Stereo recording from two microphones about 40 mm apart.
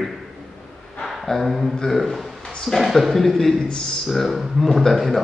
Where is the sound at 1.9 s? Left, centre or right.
Centre.